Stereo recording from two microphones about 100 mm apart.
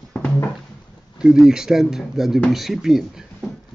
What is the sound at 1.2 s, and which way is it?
Speech, 5° right (ahead or behind).